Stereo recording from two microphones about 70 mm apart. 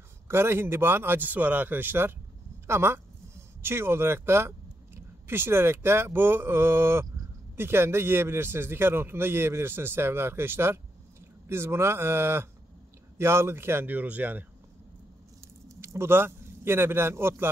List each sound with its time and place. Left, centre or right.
0.3 s a man's voice: right
15.7 s a man's voice: right